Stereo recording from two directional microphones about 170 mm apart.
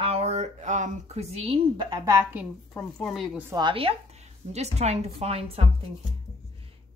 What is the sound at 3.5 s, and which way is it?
A woman's voice, 25° right (ahead or behind).